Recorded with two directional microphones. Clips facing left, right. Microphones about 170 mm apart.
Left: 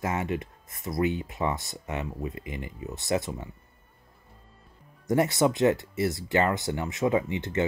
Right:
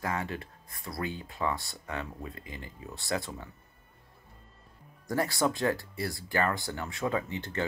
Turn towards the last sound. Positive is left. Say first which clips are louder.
# left 6 dB
turn(degrees=20)  # may be behind; listen again after turning